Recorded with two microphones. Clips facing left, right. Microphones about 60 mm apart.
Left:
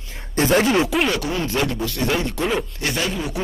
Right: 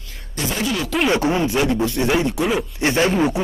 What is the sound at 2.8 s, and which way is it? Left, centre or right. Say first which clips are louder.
Speech: right 7 dB; right.